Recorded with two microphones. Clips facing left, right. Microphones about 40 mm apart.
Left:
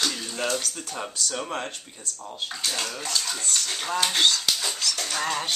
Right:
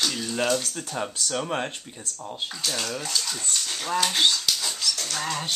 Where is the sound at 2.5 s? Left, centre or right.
Centre.